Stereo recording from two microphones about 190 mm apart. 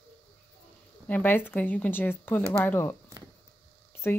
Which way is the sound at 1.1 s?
10° left (ahead or behind).